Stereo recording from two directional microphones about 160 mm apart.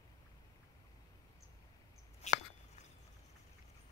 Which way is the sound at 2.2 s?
45° left (ahead or behind).